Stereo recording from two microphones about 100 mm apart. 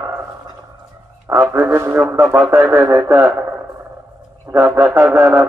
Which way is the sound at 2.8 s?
35° right (ahead or behind).